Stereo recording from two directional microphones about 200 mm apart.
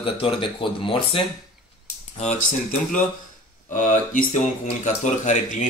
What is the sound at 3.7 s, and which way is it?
Speech, 40° left (ahead or behind).